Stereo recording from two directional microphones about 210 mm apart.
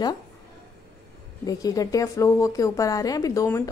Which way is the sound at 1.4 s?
15° left (ahead or behind).